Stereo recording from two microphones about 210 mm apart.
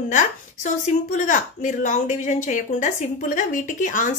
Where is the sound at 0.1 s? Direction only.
35° left (ahead or behind).